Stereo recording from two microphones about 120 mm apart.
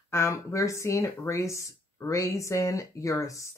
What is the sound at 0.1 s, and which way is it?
Speech, 25° left (ahead or behind).